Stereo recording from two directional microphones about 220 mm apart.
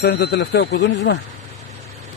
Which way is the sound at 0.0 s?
45° left (ahead or behind).